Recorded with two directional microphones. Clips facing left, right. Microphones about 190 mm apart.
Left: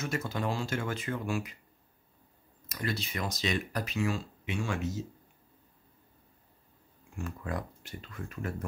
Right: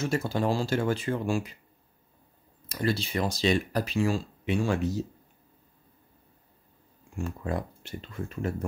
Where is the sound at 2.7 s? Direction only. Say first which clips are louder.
Right 7 dB; 30° right (ahead or behind).